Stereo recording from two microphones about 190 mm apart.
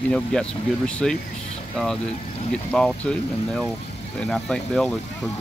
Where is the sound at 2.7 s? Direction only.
5° left (ahead or behind).